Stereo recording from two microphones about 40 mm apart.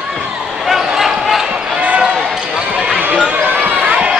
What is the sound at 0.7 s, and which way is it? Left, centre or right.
Basketball bounce, centre.